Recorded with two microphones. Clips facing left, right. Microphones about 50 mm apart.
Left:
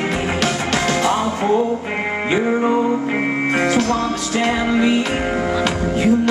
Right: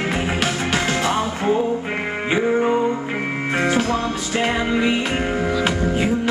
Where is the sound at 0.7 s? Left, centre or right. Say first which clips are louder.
Left 3 dB; centre.